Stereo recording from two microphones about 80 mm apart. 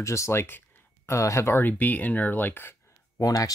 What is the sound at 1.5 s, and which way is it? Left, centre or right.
Speech, left.